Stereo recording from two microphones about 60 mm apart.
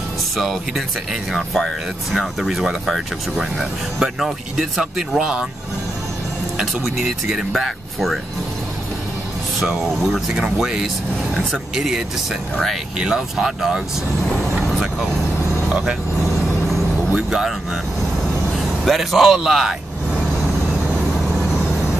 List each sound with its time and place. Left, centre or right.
0.4 s speech: centre
2.1 s speech: centre
4.2 s speech: centre
6.6 s speech: centre
9.6 s speech: centre
15.7 s speech: centre
16.6 s music: centre
18.9 s speech: centre